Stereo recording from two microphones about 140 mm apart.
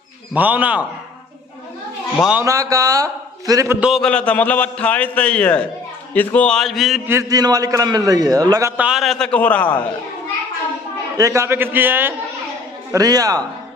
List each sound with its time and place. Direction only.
0.3 s a man's voice: 10° right (ahead or behind)
2.4 s a man's voice: 25° right (ahead or behind)
3.8 s a man's voice: centre (ahead or behind)
7.1 s a man's voice: 25° right (ahead or behind)
8.7 s a man's voice: 5° right (ahead or behind); by 9.8 s 10° left (ahead or behind)
11.1 s a man's voice: 20° right (ahead or behind)
12.9 s a man's voice: 25° right (ahead or behind)